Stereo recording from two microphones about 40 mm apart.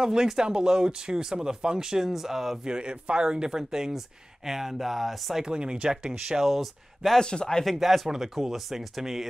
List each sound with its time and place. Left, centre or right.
0.0 s speech: centre
2.6 s speech: right; by 5.4 s centre
5.4 s speech: right
6.2 s speech: centre
7.2 s speech: centre
7.6 s speech: centre